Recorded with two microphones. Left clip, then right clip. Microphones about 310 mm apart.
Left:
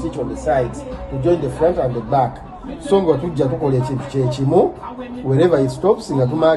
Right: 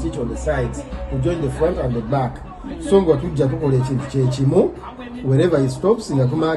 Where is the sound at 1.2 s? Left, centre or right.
Centre.